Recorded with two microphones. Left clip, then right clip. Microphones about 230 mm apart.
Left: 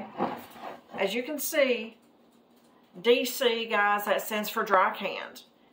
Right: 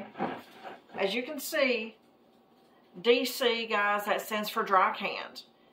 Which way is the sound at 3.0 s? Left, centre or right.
Centre.